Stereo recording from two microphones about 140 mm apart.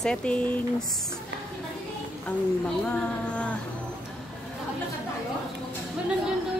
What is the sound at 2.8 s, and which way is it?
Speech, 5° left (ahead or behind).